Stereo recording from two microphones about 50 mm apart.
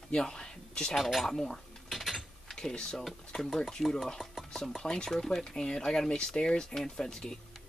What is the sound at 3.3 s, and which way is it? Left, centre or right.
Speech, centre.